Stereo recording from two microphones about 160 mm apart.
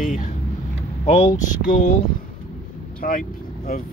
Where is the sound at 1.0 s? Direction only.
45° left (ahead or behind).